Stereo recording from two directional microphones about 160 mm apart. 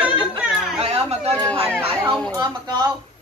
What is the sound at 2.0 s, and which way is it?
Speech, 25° right (ahead or behind).